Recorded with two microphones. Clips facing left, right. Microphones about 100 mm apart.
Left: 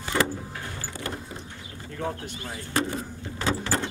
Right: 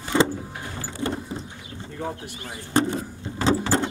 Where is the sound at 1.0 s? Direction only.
25° right (ahead or behind).